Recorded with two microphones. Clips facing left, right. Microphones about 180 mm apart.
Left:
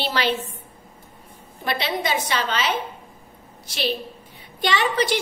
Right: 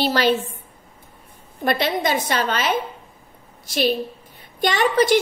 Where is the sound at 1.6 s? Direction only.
50° right (ahead or behind).